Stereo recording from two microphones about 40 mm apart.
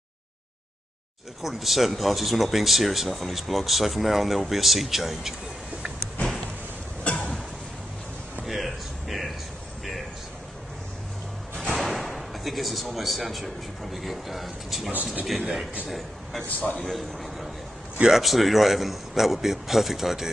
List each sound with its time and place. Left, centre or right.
1.4 s speech: centre
8.5 s a sound: centre
11.5 s music: centre
11.8 s speech: centre
16.4 s a man's voice: left
16.8 s a man's voice: centre